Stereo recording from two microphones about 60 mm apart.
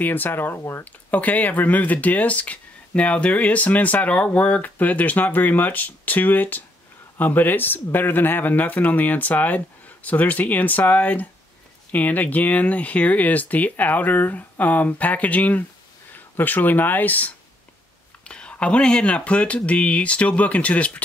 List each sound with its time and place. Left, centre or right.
0.0 s speech: left
18.2 s speech: centre